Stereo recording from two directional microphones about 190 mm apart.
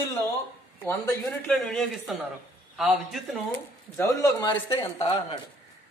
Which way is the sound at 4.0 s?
15° left (ahead or behind).